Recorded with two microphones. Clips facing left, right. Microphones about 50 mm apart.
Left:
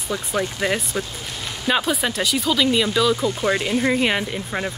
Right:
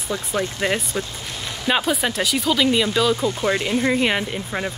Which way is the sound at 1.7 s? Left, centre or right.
Centre.